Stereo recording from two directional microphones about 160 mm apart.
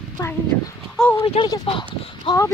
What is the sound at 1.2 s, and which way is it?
Speech, 35° left (ahead or behind).